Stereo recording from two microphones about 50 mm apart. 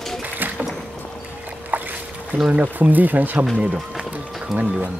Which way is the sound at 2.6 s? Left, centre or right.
Right.